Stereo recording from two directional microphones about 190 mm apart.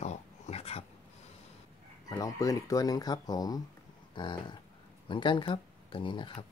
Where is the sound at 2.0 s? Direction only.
20° left (ahead or behind).